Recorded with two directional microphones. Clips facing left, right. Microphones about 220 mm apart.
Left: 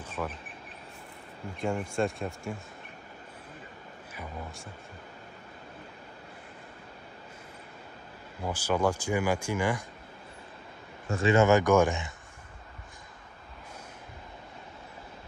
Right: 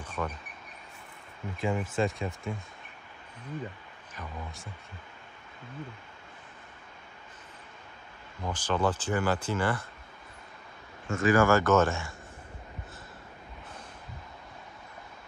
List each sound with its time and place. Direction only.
0.0 s a sound: 10° left (ahead or behind)
1.6 s speech: centre (ahead or behind)
4.1 s speech: 5° left (ahead or behind)
8.4 s speech: 10° left (ahead or behind)
11.1 s speech: 30° left (ahead or behind)